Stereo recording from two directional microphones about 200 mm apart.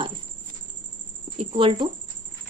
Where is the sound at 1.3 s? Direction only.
25° right (ahead or behind).